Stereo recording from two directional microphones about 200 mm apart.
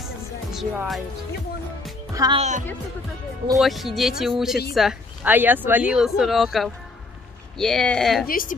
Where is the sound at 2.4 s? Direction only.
35° right (ahead or behind).